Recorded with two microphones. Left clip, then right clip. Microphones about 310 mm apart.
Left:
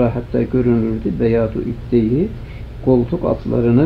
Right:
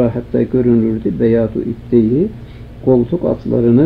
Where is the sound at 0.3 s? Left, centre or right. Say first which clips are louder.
Right 3 dB; centre.